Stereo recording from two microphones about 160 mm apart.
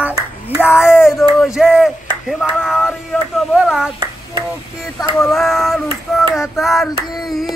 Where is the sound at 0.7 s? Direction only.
5° right (ahead or behind).